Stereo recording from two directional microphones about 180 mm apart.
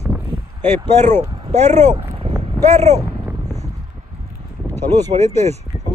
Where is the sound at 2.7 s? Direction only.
40° right (ahead or behind).